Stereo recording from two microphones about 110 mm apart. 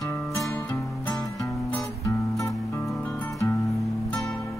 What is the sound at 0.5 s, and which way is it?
Music, 15° left (ahead or behind).